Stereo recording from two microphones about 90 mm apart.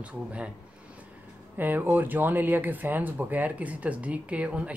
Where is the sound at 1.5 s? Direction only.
20° right (ahead or behind).